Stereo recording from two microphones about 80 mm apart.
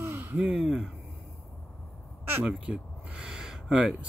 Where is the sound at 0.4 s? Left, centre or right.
Centre.